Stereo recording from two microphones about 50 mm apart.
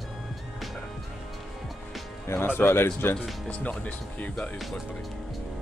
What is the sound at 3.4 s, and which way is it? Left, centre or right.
Speech, left.